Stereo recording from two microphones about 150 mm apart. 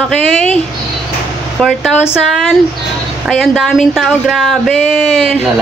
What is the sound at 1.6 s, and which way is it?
Speech, centre (ahead or behind).